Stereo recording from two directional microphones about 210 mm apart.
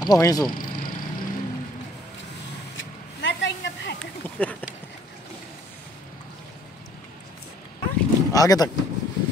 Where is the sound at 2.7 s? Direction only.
60° left (ahead or behind).